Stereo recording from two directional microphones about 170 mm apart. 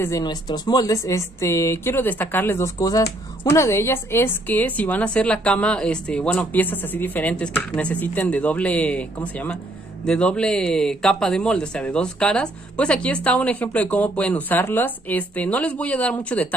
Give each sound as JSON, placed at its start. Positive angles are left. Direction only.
{"t": 0.0, "sound": "speech", "side_deg": 20}